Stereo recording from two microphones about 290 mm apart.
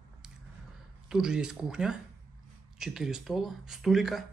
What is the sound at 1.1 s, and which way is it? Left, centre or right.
A man's voice, centre.